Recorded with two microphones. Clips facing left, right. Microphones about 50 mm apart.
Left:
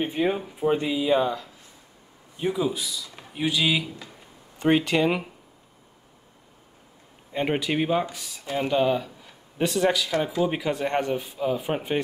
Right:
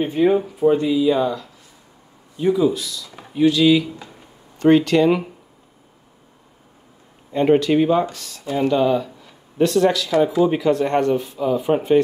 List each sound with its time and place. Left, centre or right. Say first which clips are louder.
0.0 s speech: right 8 dB; centre
0.7 s speech: right 6 dB; centre
7.3 s speech: right 9 dB; centre